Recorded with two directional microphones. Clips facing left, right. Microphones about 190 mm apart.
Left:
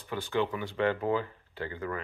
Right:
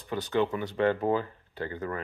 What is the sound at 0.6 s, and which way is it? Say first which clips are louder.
Speech: right 3 dB; 40° right (ahead or behind).